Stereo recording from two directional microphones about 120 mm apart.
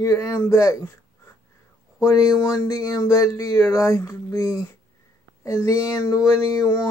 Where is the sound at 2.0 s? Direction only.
25° left (ahead or behind).